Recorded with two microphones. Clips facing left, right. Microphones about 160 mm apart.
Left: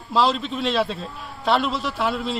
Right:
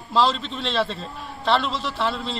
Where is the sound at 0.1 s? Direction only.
5° left (ahead or behind).